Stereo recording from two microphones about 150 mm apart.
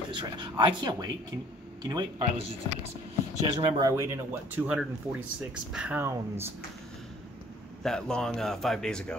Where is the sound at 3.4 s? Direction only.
30° right (ahead or behind).